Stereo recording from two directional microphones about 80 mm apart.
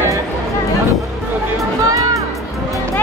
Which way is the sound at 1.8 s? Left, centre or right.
Right.